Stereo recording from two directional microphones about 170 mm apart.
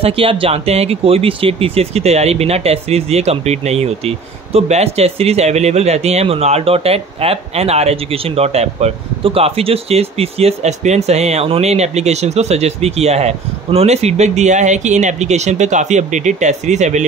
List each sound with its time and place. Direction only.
0.0 s speech: 35° right (ahead or behind)